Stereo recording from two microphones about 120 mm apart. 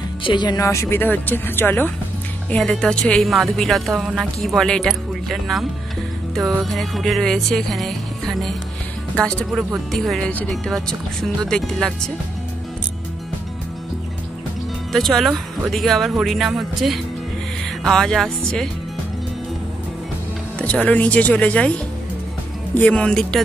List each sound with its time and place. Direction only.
0.2 s speech: 40° left (ahead or behind); by 1.9 s 15° left (ahead or behind)
2.5 s speech: 5° left (ahead or behind)
14.9 s speech: 5° left (ahead or behind)
20.5 s speech: 10° left (ahead or behind)